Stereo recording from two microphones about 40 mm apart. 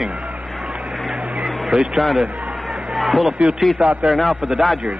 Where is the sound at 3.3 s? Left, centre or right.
Right.